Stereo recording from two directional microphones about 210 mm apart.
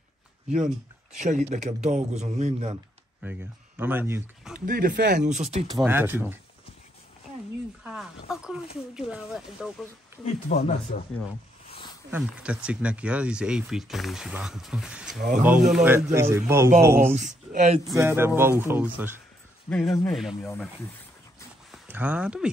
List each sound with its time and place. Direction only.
1.1 s a man's voice: 35° right (ahead or behind)
3.2 s speech: 10° right (ahead or behind)
4.6 s a man's voice: 40° right (ahead or behind)
5.8 s a man's voice: 10° right (ahead or behind)
7.8 s speech: 5° right (ahead or behind)
10.2 s speech: 30° left (ahead or behind)
12.1 s speech: 5° right (ahead or behind)
15.1 s a man's voice: 40° right (ahead or behind)
15.7 s a man's voice: 5° right (ahead or behind)
17.1 s a man's voice: 35° right (ahead or behind)
17.9 s a man's voice: 10° right (ahead or behind)
19.7 s speech: 5° left (ahead or behind)
21.7 s speech: 10° right (ahead or behind)